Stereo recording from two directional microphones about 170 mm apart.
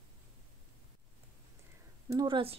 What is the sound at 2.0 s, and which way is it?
Speech, 25° right (ahead or behind).